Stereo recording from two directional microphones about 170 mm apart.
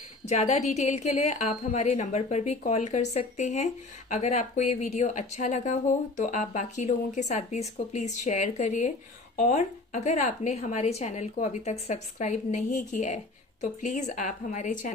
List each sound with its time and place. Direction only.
0.2 s a woman's voice: 40° left (ahead or behind)